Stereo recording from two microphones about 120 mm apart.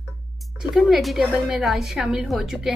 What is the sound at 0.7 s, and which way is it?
A woman's voice, centre (ahead or behind).